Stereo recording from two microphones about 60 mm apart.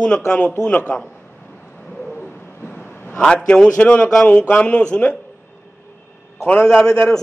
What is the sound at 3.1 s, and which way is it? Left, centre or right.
A man's voice, centre.